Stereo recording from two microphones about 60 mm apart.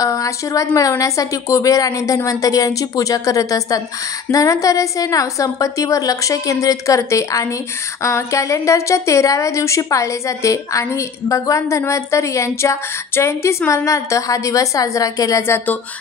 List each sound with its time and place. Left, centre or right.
0.0 s a woman's voice: left
13.8 s speech: left